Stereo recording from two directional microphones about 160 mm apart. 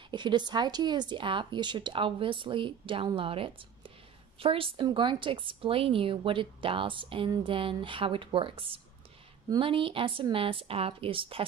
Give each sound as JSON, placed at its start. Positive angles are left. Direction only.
{"t": 0.1, "sound": "a woman's voice", "side_deg": -30}